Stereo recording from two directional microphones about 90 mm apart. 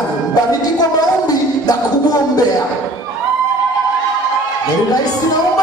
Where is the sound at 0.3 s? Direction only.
50° left (ahead or behind).